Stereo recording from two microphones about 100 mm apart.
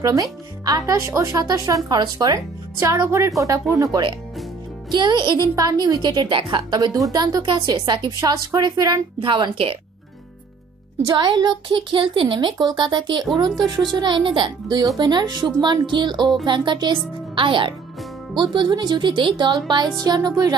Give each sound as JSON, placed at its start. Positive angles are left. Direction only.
{"t": 0.0, "sound": "speech", "side_deg": -35}
{"t": 1.3, "sound": "speech", "side_deg": -40}
{"t": 4.9, "sound": "a woman's voice", "side_deg": -45}
{"t": 7.4, "sound": "a woman's voice", "side_deg": -50}
{"t": 9.2, "sound": "a child's voice", "side_deg": -55}
{"t": 11.1, "sound": "a woman's voice", "side_deg": -45}
{"t": 11.7, "sound": "a child's voice", "side_deg": -60}
{"t": 20.1, "sound": "speech", "side_deg": -40}